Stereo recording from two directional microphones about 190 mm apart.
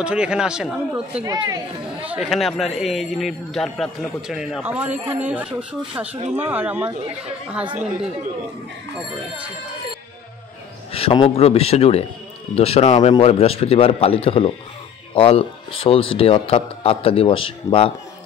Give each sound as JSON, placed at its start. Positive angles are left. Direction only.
{"t": 0.0, "sound": "a man's voice", "side_deg": -5}
{"t": 1.2, "sound": "speech", "side_deg": -20}
{"t": 2.0, "sound": "a man's voice", "side_deg": -5}
{"t": 10.9, "sound": "a man's voice", "side_deg": 30}